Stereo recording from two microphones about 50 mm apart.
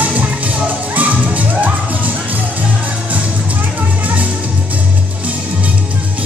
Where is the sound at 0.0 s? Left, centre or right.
Right.